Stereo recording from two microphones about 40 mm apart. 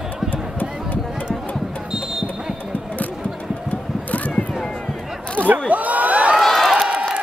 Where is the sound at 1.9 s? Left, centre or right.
Centre.